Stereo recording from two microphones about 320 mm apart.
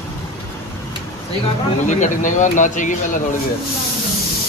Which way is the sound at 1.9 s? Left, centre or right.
Left.